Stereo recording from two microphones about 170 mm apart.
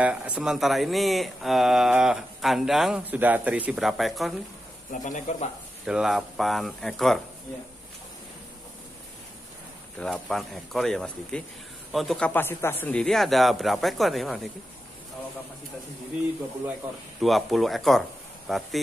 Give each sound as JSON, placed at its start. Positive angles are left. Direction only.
{"t": 0.0, "sound": "speech", "side_deg": -5}
{"t": 5.0, "sound": "speech", "side_deg": 50}
{"t": 5.9, "sound": "speech", "side_deg": -5}
{"t": 9.9, "sound": "speech", "side_deg": 5}
{"t": 12.3, "sound": "speech", "side_deg": 10}
{"t": 17.2, "sound": "speech", "side_deg": 0}